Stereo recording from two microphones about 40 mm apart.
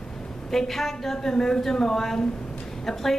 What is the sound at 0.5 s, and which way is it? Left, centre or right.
A woman's voice, centre.